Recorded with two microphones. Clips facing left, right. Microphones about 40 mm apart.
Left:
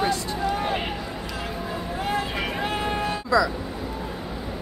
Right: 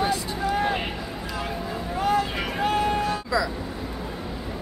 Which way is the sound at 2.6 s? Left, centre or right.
Left.